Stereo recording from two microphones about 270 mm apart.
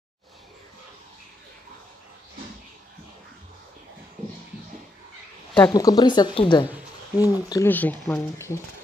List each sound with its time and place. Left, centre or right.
5.7 s speech: centre
6.7 s a sound: centre
7.4 s speech: centre